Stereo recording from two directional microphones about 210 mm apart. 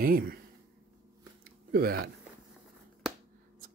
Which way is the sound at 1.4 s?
45° right (ahead or behind).